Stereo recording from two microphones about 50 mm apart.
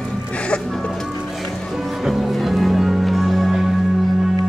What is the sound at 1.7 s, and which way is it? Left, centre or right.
Music, centre.